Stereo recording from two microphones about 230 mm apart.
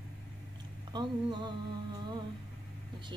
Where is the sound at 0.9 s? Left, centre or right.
Centre.